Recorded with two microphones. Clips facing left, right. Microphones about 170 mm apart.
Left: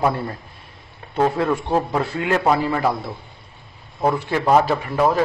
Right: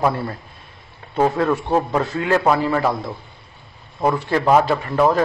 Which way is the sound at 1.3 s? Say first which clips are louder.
Right 1 dB; 20° left (ahead or behind).